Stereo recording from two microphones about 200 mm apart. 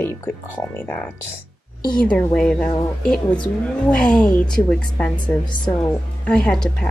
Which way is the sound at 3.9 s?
5° left (ahead or behind).